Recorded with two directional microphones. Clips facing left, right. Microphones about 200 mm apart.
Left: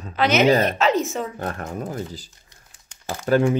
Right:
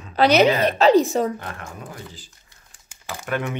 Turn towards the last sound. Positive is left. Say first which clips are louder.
# left 8 dB
turn(degrees=30)  # may be behind; listen again after turning